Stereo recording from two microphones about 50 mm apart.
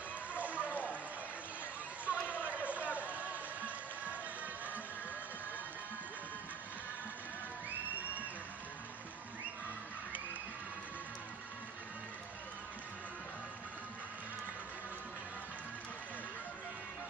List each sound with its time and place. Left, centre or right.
0.4 s run: right
2.0 s music: right